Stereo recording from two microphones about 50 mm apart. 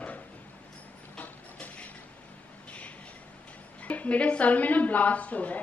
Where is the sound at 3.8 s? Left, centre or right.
Left.